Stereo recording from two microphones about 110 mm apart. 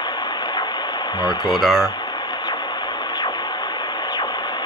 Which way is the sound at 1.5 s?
Centre (ahead or behind).